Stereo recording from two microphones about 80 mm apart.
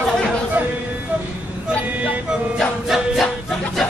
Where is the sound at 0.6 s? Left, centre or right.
Centre.